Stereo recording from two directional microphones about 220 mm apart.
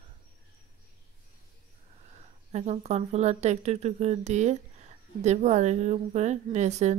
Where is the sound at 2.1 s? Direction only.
30° right (ahead or behind).